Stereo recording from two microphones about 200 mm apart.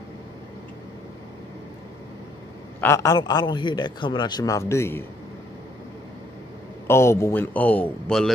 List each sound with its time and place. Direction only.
2.8 s a man's voice: 15° left (ahead or behind)
6.9 s a man's voice: 15° left (ahead or behind)